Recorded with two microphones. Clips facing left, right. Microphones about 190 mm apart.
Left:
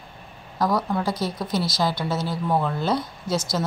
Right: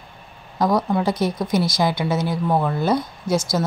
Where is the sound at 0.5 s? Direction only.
20° right (ahead or behind).